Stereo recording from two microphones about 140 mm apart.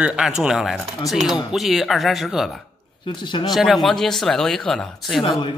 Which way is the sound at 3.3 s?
35° left (ahead or behind).